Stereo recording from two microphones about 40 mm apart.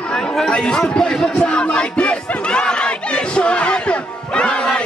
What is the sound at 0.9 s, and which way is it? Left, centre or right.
Crowd, centre.